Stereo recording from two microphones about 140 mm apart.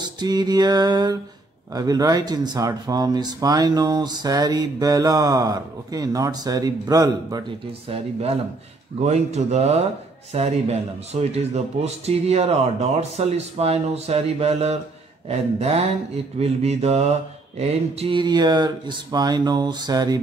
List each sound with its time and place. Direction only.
0.0 s speech: 30° right (ahead or behind)
7.9 s speech: 45° right (ahead or behind); by 20.2 s 30° right (ahead or behind)